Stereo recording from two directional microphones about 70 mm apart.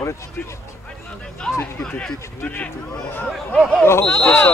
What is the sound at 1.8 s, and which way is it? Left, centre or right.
Speech, centre.